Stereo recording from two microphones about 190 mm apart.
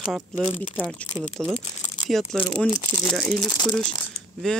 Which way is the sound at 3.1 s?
Centre (ahead or behind).